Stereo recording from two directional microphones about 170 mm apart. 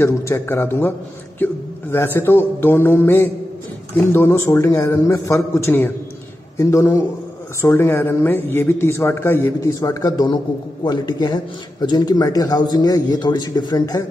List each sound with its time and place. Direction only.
0.0 s a man's voice: 15° left (ahead or behind)